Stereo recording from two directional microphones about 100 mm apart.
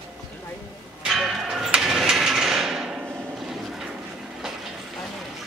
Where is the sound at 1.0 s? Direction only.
5° right (ahead or behind).